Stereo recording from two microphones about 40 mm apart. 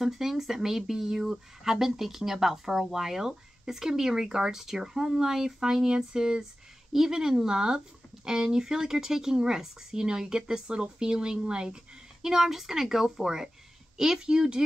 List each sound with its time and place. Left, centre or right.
0.0 s speech: centre
12.2 s speech: centre